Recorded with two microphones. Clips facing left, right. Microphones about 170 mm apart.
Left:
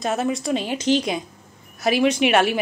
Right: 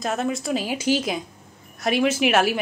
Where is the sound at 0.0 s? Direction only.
Centre (ahead or behind).